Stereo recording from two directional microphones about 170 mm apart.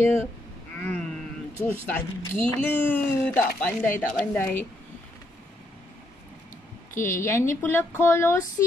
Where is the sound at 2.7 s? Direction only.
10° left (ahead or behind).